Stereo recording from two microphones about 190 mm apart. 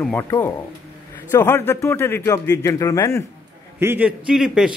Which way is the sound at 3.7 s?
10° right (ahead or behind).